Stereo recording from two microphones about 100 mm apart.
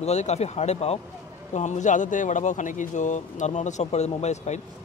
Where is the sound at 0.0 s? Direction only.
90° left.